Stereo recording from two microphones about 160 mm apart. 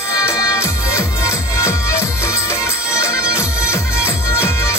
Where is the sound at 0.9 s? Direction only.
20° left (ahead or behind).